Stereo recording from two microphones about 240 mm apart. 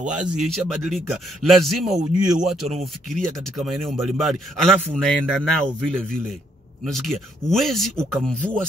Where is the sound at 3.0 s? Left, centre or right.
Centre.